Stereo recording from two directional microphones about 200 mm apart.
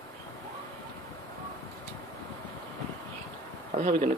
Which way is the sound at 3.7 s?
40° right (ahead or behind).